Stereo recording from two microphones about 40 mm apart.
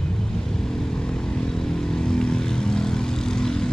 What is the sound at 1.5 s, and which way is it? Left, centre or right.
Vehicle, centre.